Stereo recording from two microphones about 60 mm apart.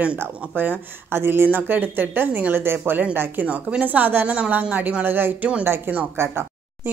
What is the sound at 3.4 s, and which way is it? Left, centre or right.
A woman's voice, right.